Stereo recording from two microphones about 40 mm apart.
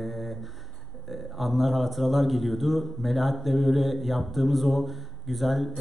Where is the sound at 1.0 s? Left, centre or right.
Centre.